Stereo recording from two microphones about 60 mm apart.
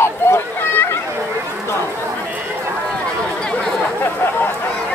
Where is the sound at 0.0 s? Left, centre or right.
Left.